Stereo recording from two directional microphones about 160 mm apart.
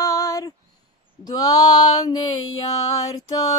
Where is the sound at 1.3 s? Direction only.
25° left (ahead or behind).